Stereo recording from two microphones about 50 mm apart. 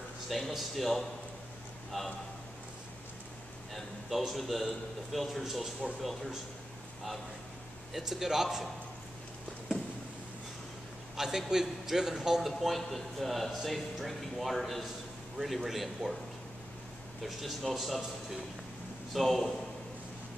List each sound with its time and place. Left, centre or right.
0.3 s a man's voice: centre
4.1 s a man's voice: centre
7.9 s speech: centre
11.1 s a man's voice: centre
17.2 s a man's voice: centre
19.1 s a man's voice: centre